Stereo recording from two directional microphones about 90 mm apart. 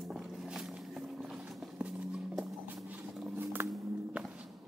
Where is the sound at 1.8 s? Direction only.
5° right (ahead or behind).